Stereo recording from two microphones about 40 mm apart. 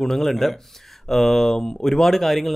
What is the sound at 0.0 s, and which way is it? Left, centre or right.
A man's voice, centre.